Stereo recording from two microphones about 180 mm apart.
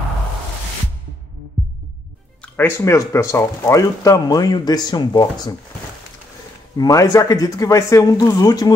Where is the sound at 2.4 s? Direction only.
10° left (ahead or behind).